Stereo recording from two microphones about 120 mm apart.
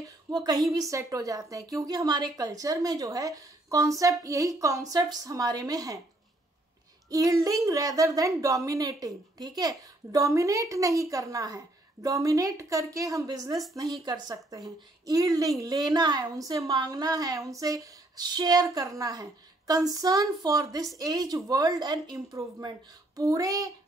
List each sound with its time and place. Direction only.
0.0 s a woman's voice: 35° right (ahead or behind)
7.1 s a woman's voice: 30° right (ahead or behind)